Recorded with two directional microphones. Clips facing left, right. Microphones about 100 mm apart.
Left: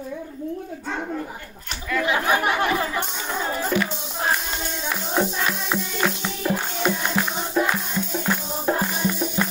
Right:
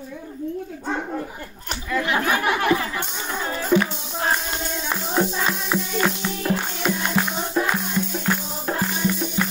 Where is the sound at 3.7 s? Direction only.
15° right (ahead or behind).